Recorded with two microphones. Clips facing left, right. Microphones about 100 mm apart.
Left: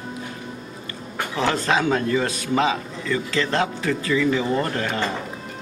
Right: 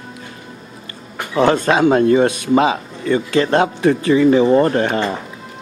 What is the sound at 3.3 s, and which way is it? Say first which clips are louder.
Speech: right 8 dB; 55° right (ahead or behind).